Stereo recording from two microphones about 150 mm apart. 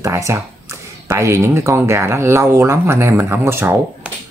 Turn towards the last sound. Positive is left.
turn(degrees=-15)  # may be behind; listen again after turning